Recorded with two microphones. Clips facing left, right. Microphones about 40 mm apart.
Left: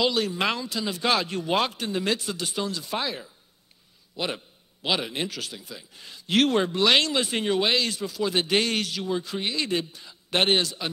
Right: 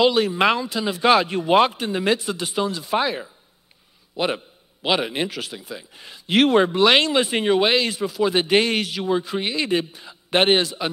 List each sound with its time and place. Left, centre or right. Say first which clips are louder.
0.0 s speech: right 7 dB; centre